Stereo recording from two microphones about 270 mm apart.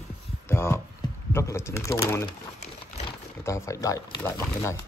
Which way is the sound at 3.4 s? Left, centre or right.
Centre.